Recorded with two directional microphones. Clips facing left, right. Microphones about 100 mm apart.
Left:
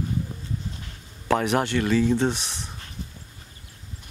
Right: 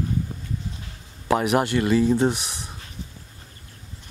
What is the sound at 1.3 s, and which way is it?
Speech, 10° right (ahead or behind).